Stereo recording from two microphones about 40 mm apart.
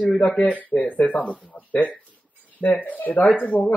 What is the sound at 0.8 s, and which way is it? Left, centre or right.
Speech, left.